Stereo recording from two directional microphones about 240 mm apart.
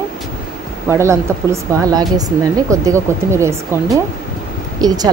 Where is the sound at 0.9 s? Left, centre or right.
Centre.